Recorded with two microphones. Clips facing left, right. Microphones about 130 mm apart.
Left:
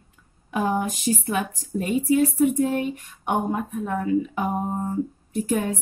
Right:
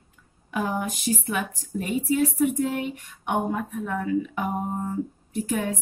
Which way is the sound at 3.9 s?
30° left (ahead or behind).